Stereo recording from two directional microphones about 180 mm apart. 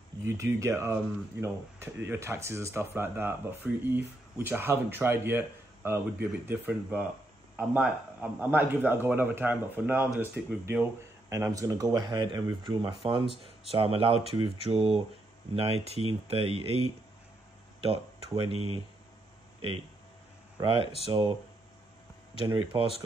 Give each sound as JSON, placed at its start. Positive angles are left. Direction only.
{"t": 0.2, "sound": "speech", "side_deg": -15}
{"t": 20.5, "sound": "speech", "side_deg": -30}
{"t": 22.5, "sound": "speech", "side_deg": -30}